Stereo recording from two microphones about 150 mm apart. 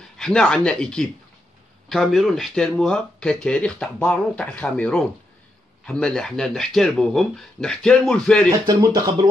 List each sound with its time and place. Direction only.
0.2 s speech: 5° left (ahead or behind)
8.6 s speech: 25° right (ahead or behind)